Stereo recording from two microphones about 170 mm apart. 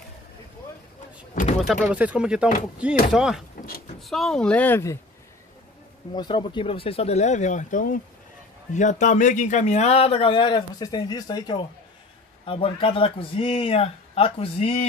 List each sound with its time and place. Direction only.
1.7 s speech: 5° right (ahead or behind); by 4.9 s 10° left (ahead or behind)
6.1 s a man's voice: 25° left (ahead or behind)